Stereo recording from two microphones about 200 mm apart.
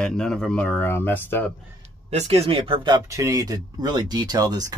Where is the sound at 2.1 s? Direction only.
30° right (ahead or behind).